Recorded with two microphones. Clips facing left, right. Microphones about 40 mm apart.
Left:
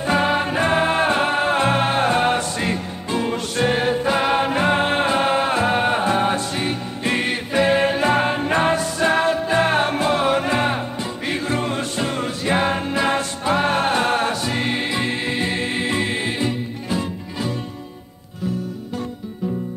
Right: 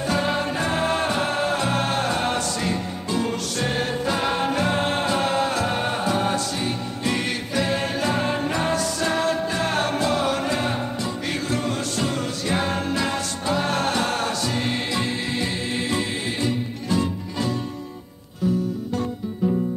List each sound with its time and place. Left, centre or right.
0.0 s music: left